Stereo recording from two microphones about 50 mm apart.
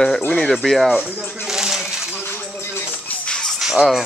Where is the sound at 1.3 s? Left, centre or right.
Centre.